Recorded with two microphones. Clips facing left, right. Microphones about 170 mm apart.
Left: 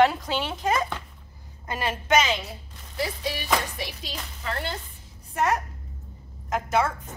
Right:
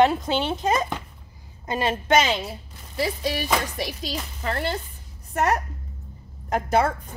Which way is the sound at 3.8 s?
40° right (ahead or behind).